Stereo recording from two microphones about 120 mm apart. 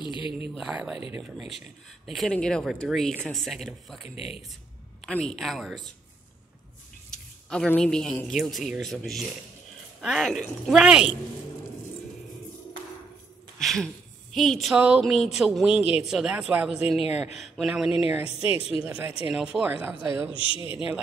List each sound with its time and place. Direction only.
0.0 s speech: 45° left (ahead or behind)
0.6 s speech: 5° right (ahead or behind)
2.0 s speech: centre (ahead or behind)
5.3 s speech: centre (ahead or behind)
7.1 s speech: 5° left (ahead or behind)
13.6 s speech: centre (ahead or behind)
20.3 s speech: 45° left (ahead or behind)